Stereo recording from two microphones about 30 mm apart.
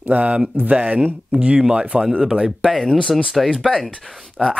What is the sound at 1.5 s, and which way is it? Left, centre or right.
Speech, right.